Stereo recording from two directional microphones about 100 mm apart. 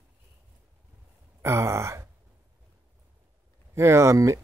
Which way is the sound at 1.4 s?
30° right (ahead or behind).